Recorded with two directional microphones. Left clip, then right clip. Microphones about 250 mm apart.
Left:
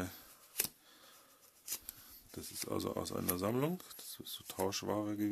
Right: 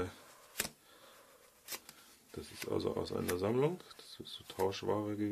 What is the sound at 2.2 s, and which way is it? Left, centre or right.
Speech, left.